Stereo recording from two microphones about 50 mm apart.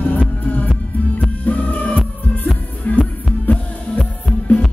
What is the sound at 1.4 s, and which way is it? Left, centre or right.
Music, left.